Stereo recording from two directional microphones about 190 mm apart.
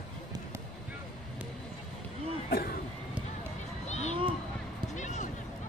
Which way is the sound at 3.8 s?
35° left (ahead or behind).